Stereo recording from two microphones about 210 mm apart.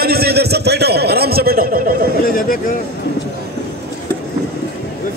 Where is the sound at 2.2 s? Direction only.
45° left (ahead or behind).